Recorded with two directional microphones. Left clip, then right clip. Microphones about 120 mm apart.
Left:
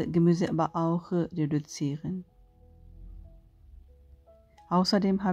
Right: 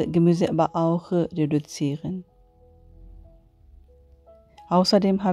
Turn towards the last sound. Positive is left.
turn(degrees=-45)  # may be behind; listen again after turning